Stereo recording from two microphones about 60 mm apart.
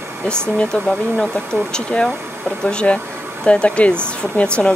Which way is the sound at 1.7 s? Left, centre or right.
Centre.